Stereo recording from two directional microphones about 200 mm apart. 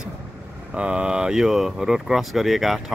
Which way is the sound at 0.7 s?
5° right (ahead or behind).